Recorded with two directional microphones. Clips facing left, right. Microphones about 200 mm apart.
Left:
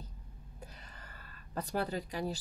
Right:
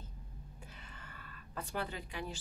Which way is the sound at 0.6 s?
40° left (ahead or behind).